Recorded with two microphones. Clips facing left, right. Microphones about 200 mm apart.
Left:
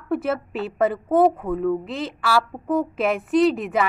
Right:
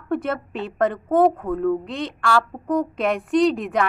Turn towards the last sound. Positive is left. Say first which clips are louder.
# even
turn(degrees=5)  # may be behind; listen again after turning